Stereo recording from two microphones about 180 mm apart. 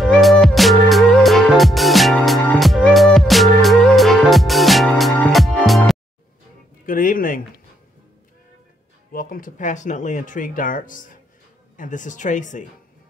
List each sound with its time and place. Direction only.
0.0 s music: centre (ahead or behind)
6.9 s speech: 50° left (ahead or behind)
9.1 s speech: 50° left (ahead or behind)